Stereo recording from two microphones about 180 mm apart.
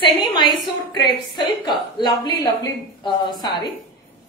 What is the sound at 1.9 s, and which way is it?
A woman's voice, 25° left (ahead or behind).